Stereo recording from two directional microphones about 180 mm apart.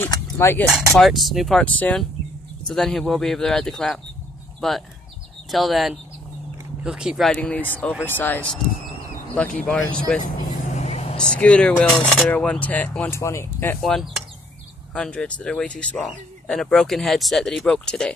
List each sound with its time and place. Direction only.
0.0 s speech: 15° left (ahead or behind)
0.7 s speech: centre (ahead or behind)
10.7 s vehicle: 35° left (ahead or behind)
11.1 s speech: 5° left (ahead or behind)
13.7 s speech: centre (ahead or behind)